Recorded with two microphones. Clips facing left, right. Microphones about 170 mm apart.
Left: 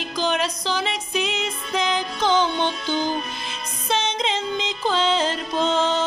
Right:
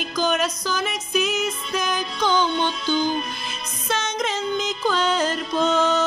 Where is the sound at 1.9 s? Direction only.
25° left (ahead or behind).